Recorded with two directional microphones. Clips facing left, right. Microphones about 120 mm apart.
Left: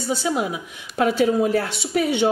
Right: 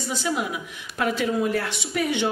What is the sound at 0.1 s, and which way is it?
A woman's voice, 35° left (ahead or behind).